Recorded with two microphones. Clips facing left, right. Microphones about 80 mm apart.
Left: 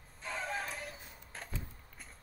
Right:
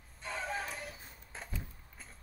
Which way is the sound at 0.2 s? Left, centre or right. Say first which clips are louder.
Even; centre.